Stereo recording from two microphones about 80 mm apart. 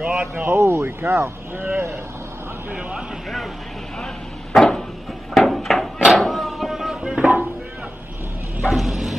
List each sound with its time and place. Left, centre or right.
0.0 s speech: centre
0.4 s speech: right
4.0 s a sound: centre
8.6 s bow-wow: centre